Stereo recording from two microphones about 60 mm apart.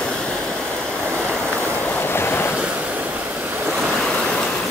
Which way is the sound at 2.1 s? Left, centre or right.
Left.